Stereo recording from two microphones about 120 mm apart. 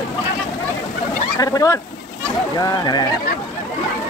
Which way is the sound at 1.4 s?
30° left (ahead or behind).